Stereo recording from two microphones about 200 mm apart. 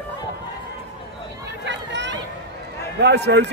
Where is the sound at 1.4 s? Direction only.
65° right (ahead or behind).